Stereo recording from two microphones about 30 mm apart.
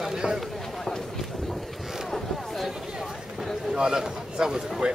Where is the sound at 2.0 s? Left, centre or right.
Centre.